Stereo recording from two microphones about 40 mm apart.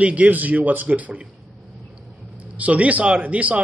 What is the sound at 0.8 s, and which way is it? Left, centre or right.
Speech, right.